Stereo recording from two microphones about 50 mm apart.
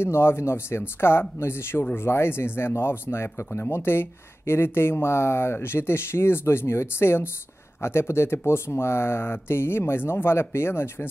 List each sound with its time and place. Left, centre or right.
0.0 s speech: left